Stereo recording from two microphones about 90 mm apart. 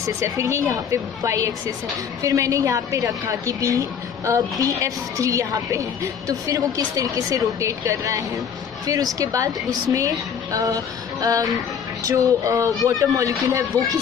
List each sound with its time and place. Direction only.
0.0 s a woman's voice: 35° right (ahead or behind)